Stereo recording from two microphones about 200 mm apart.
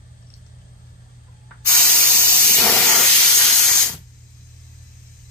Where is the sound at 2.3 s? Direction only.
5° left (ahead or behind).